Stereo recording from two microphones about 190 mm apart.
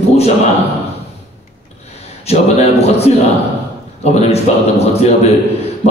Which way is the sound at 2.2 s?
35° left (ahead or behind).